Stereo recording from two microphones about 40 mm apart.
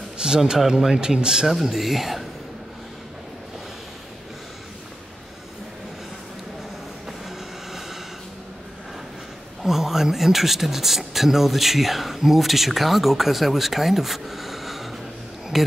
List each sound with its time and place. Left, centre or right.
0.4 s speech: centre
1.5 s speech: centre
7.1 s train: centre
9.6 s speech: centre